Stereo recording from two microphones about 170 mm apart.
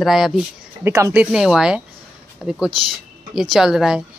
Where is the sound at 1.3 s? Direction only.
5° right (ahead or behind).